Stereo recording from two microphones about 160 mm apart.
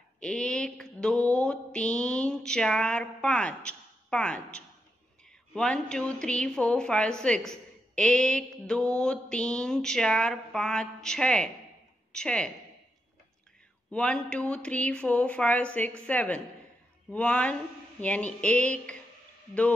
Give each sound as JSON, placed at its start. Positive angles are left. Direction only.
{"t": 0.2, "sound": "a woman's voice", "side_deg": 5}
{"t": 13.8, "sound": "speech", "side_deg": 5}